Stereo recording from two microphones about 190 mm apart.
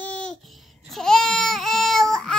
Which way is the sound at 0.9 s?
Centre (ahead or behind).